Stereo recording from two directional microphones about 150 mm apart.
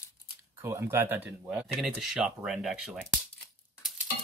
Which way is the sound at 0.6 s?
15° right (ahead or behind).